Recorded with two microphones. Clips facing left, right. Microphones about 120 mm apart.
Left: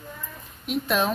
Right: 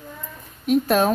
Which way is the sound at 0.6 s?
40° right (ahead or behind).